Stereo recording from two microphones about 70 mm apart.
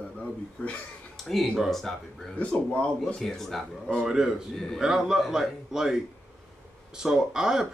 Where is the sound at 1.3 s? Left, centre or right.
Centre.